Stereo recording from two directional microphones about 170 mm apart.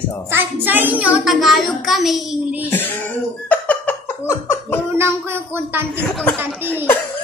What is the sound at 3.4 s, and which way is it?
Laughter, 10° left (ahead or behind).